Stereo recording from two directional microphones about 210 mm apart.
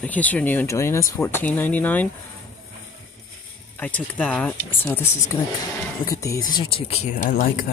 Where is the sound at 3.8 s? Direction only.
5° left (ahead or behind).